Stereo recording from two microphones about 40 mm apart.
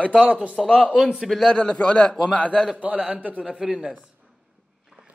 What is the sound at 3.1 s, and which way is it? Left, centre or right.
Speech, right.